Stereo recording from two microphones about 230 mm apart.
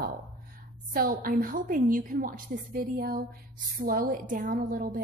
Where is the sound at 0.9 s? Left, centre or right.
Right.